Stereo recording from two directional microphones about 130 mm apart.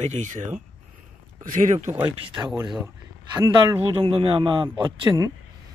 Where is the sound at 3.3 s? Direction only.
30° right (ahead or behind).